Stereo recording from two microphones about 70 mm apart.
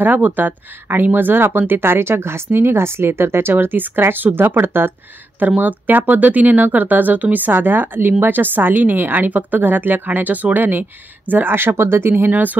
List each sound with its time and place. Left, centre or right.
0.0 s a woman's voice: right